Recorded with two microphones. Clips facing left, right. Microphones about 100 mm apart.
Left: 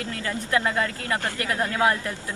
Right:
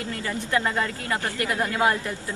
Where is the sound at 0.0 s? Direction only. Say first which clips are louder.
Even; 15° right (ahead or behind).